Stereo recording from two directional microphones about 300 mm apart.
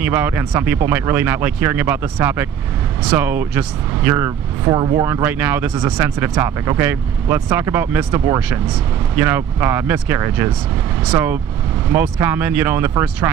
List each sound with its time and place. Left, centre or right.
0.0 s speech: centre